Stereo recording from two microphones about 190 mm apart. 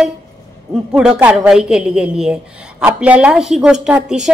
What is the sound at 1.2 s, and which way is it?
A woman's voice, 5° right (ahead or behind).